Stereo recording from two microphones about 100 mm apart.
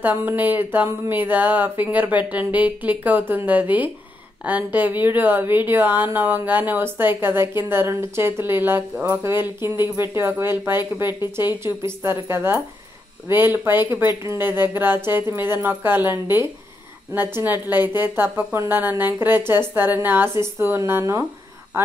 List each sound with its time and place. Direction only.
0.0 s speech: 20° right (ahead or behind)